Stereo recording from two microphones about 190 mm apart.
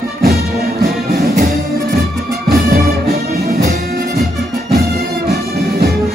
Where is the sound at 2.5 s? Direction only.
50° right (ahead or behind).